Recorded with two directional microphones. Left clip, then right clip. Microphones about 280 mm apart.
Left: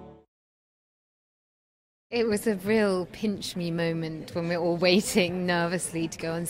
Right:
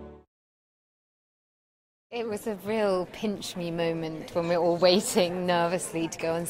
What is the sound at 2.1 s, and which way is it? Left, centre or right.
Speech, left.